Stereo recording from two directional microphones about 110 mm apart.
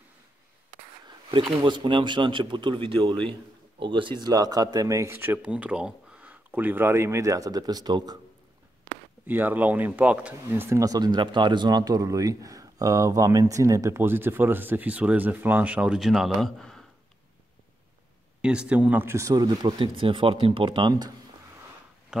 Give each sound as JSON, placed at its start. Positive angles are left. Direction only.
{"t": 1.5, "sound": "speech", "side_deg": -45}
{"t": 4.2, "sound": "a man's voice", "side_deg": -35}
{"t": 9.2, "sound": "speech", "side_deg": -15}
{"t": 10.8, "sound": "a man's voice", "side_deg": -35}
{"t": 18.4, "sound": "speech", "side_deg": -10}
{"t": 22.1, "sound": "speech", "side_deg": -5}